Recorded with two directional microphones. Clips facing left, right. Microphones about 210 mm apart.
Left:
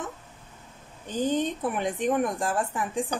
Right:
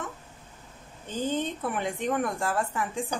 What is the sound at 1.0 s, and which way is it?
Speech, 15° left (ahead or behind).